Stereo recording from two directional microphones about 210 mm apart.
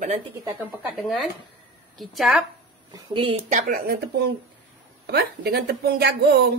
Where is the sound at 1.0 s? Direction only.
Centre (ahead or behind).